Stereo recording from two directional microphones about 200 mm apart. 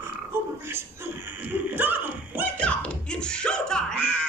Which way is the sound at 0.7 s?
10° right (ahead or behind).